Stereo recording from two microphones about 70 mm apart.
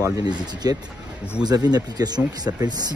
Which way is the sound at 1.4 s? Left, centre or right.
Right.